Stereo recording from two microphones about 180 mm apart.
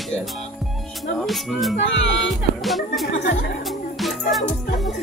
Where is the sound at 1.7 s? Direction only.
90° left.